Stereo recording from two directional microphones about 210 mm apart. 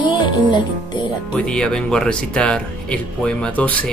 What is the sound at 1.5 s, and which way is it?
Speech, 5° left (ahead or behind).